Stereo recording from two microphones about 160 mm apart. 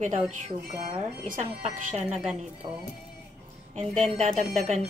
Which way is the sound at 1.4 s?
40° right (ahead or behind).